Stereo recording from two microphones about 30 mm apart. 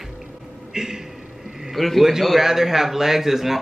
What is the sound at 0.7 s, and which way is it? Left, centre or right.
Speech, centre.